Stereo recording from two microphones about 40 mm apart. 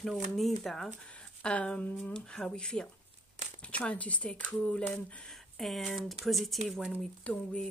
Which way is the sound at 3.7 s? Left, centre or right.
Left.